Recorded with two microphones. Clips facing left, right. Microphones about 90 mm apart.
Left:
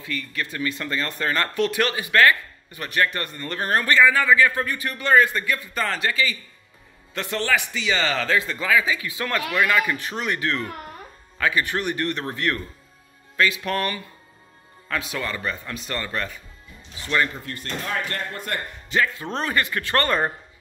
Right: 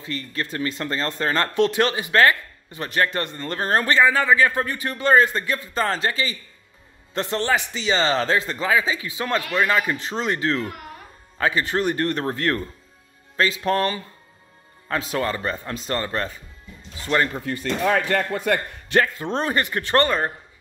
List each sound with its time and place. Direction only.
0.0 s speech: 30° right (ahead or behind)
17.9 s a man's voice: 90° right
19.1 s speech: 25° right (ahead or behind)
20.1 s speech: 5° left (ahead or behind)